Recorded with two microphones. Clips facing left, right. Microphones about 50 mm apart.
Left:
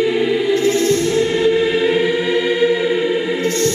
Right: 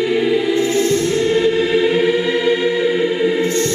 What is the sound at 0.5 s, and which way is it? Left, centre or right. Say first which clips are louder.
Music: left 1 dB; centre.